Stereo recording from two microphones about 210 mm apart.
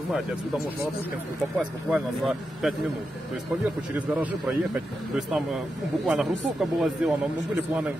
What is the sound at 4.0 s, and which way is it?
A man's voice, 5° right (ahead or behind).